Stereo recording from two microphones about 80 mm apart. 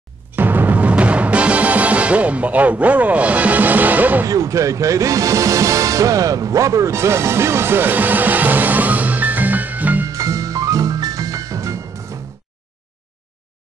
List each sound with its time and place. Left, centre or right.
0.3 s timpani: right
4.3 s speech: right
10.0 s music: right